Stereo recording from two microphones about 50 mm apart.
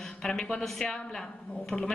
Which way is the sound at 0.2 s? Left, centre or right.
Centre.